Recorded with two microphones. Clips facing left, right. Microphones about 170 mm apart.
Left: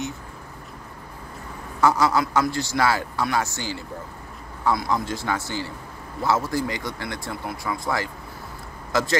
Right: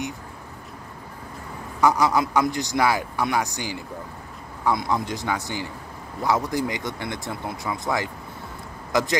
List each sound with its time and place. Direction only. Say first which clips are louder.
1.8 s a man's voice: even; 15° right (ahead or behind)